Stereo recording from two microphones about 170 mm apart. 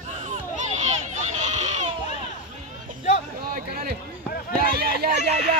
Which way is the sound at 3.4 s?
60° right (ahead or behind).